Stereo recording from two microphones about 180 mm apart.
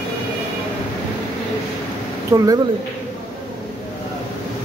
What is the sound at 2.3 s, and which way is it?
Speech, 20° right (ahead or behind).